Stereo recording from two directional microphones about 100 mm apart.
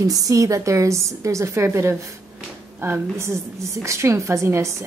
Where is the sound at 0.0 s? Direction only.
35° right (ahead or behind).